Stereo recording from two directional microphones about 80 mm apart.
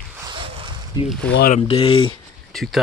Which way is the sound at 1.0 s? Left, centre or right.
Left.